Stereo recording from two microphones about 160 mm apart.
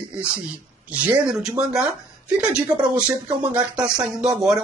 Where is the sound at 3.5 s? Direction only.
5° right (ahead or behind).